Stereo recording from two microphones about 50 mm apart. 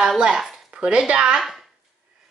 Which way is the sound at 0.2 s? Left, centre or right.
Centre.